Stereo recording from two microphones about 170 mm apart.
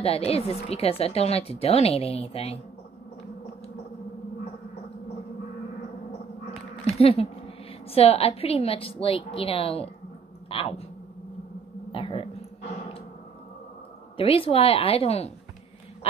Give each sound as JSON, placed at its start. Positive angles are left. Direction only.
{"t": 0.0, "sound": "a woman's voice", "side_deg": 35}
{"t": 6.9, "sound": "a woman's voice", "side_deg": 35}
{"t": 11.9, "sound": "dog", "side_deg": 30}
{"t": 14.1, "sound": "a woman's voice", "side_deg": 35}